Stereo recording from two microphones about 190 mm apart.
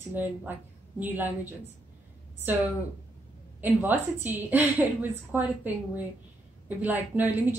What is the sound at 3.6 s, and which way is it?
A woman's voice, 10° right (ahead or behind).